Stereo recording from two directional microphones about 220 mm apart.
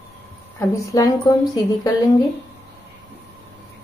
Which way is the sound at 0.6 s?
15° left (ahead or behind).